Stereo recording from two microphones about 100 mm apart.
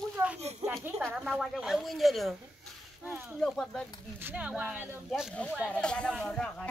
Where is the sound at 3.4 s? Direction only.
5° left (ahead or behind).